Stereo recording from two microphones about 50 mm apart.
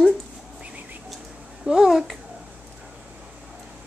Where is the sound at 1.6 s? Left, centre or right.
Centre.